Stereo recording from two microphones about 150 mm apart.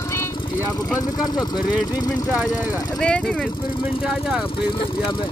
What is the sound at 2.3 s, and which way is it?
Speech, 10° right (ahead or behind).